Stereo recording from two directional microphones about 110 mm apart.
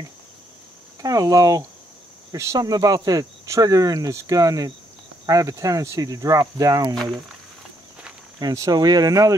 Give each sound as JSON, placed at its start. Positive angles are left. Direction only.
{"t": 1.0, "sound": "speech", "side_deg": -35}
{"t": 8.4, "sound": "speech", "side_deg": -35}